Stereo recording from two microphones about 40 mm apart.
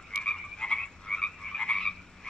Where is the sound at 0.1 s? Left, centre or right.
Centre.